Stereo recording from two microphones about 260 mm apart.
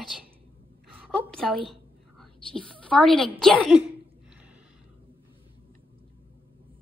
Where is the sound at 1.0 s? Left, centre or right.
Centre.